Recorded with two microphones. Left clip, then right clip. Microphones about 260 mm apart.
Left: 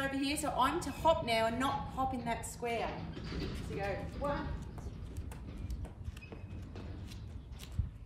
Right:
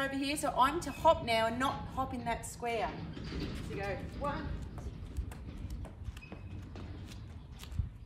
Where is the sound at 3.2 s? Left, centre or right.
Left.